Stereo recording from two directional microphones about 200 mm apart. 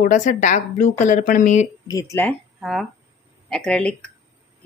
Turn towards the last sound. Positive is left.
turn(degrees=5)  # may be behind; listen again after turning